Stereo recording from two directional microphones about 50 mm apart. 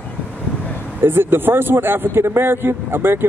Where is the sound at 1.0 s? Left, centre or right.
Right.